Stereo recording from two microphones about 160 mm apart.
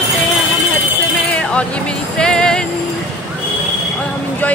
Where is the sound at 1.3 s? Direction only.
5° left (ahead or behind).